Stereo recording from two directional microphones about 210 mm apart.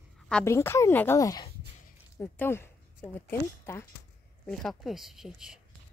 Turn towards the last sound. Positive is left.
turn(degrees=0)  # may be behind; listen again after turning